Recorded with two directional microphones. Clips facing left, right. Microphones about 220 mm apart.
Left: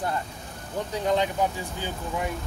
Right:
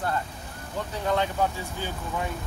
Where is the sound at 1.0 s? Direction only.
15° left (ahead or behind).